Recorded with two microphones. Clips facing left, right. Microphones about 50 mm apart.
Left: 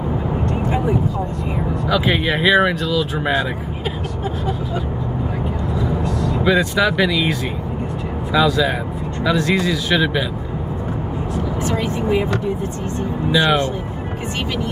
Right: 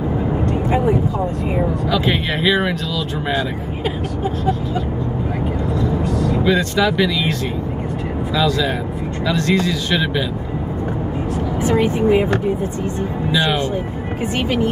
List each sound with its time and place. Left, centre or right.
1.9 s speech: centre
6.4 s speech: centre
8.4 s speech: centre
11.6 s speech: right
13.3 s speech: centre